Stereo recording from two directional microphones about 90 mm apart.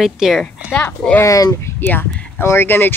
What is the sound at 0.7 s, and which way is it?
Speech, 15° left (ahead or behind).